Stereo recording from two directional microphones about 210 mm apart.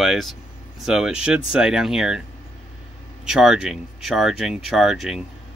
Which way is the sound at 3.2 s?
Centre (ahead or behind).